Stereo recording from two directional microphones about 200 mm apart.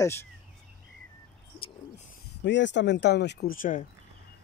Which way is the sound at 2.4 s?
65° left (ahead or behind).